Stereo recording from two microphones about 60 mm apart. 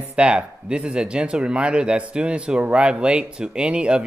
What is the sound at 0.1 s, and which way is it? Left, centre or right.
Speech, centre.